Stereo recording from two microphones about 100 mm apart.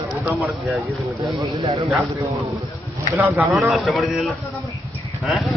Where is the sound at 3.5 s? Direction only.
Centre (ahead or behind).